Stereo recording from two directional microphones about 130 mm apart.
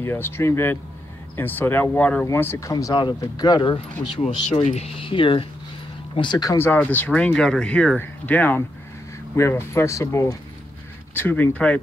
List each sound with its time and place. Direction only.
0.0 s speech: 20° left (ahead or behind); by 3.8 s 35° left (ahead or behind)
4.2 s speech: 50° left (ahead or behind); by 6.6 s 30° left (ahead or behind)
6.6 s speech: 15° left (ahead or behind)